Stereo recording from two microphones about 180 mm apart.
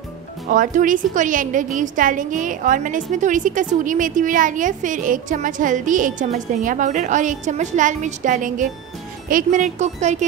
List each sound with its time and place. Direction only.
0.5 s a woman's voice: 45° right (ahead or behind)